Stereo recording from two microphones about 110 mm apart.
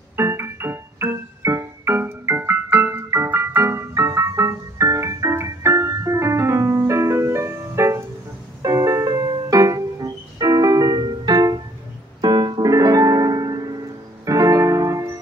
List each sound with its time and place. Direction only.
0.1 s music: 25° right (ahead or behind)
12.2 s piano: 40° right (ahead or behind)
14.2 s keyboard: 30° right (ahead or behind)